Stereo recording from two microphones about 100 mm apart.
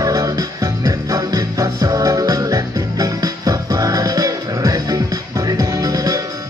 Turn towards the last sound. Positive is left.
turn(degrees=-35)  # may be behind; listen again after turning